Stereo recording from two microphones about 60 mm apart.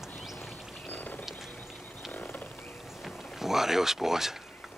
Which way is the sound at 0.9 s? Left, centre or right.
Left.